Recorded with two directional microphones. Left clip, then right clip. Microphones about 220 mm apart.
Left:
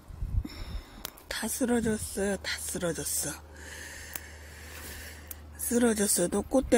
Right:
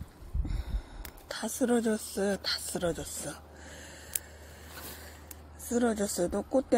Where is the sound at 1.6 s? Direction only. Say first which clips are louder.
Right 1 dB; 15° left (ahead or behind).